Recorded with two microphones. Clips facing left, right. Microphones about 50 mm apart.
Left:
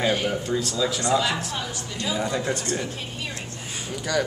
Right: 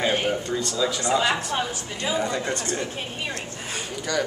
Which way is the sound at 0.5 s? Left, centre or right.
Centre.